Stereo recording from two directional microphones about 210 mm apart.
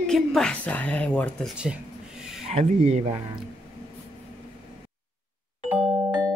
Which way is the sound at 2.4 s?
30° right (ahead or behind).